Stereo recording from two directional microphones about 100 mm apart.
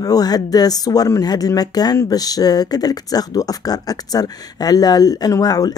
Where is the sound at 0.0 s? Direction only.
40° left (ahead or behind).